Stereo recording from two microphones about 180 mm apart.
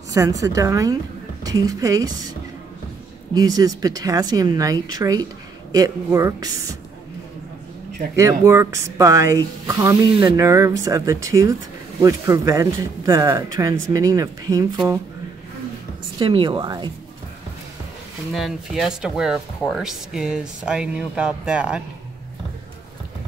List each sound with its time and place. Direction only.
0.1 s a woman's voice: 20° right (ahead or behind)
3.3 s a woman's voice: 20° right (ahead or behind)
8.2 s speech: 15° right (ahead or behind)
16.2 s a woman's voice: 25° right (ahead or behind)
18.3 s speech: centre (ahead or behind)